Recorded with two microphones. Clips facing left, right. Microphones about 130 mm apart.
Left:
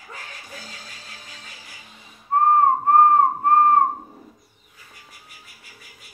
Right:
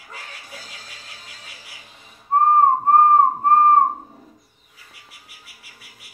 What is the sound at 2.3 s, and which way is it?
Whistling, 25° right (ahead or behind).